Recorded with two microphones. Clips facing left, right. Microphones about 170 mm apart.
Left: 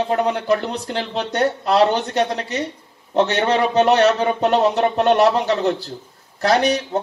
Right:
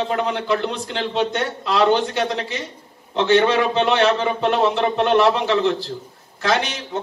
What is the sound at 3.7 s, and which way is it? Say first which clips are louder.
Speech: left 3 dB; 40° left (ahead or behind).